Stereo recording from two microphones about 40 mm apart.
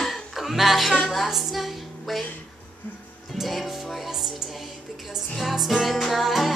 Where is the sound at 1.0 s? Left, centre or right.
Centre.